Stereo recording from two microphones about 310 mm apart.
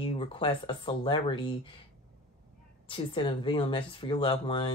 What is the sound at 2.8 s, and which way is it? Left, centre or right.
A woman's voice, centre.